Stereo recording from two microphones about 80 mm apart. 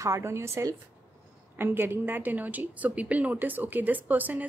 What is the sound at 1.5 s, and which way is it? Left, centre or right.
A woman's voice, right.